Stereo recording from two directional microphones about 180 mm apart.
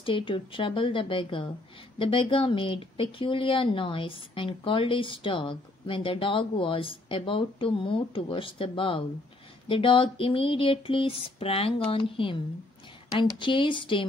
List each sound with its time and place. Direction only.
0.0 s speech: 30° left (ahead or behind)